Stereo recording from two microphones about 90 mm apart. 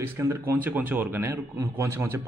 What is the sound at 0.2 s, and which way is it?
A man's voice, 30° right (ahead or behind).